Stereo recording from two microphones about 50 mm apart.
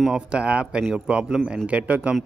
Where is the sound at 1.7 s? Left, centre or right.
Right.